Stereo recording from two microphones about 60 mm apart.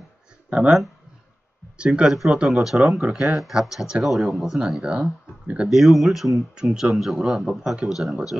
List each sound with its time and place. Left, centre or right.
0.5 s speech: right
1.8 s speech: centre
2.5 s speech: centre
3.2 s speech: centre
4.6 s speech: centre
5.7 s speech: centre